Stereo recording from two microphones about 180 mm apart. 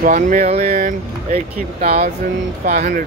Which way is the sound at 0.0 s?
45° right (ahead or behind).